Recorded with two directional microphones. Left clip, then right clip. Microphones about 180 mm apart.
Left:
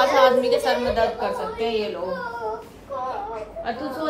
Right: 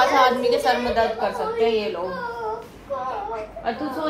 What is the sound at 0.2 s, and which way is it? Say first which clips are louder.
A woman's voice: left 1 dB; 5° left (ahead or behind).